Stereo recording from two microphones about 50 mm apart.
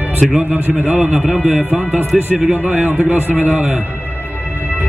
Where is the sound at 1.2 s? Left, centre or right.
Centre.